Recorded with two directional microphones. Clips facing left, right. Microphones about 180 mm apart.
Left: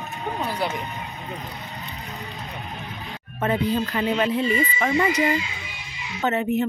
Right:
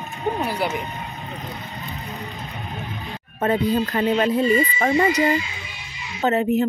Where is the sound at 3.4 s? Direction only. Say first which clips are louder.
Right 3 dB; 40° right (ahead or behind).